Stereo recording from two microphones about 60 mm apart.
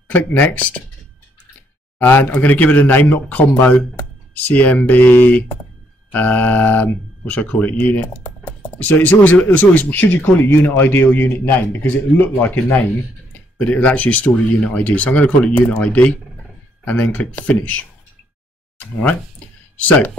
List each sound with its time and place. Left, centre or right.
0.1 s speech: left
2.0 s speech: left